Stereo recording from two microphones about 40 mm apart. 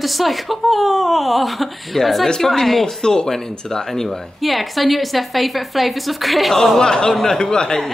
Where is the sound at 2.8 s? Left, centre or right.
Centre.